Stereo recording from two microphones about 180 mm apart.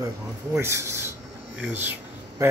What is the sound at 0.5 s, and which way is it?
Speech, 15° right (ahead or behind).